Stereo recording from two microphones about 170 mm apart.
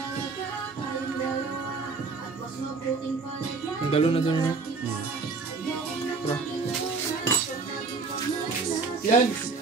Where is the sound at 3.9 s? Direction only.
35° left (ahead or behind).